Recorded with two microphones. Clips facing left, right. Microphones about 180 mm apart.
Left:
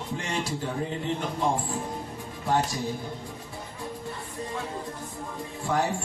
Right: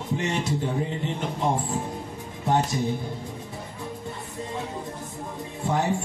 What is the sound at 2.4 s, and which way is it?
Speech, 20° right (ahead or behind).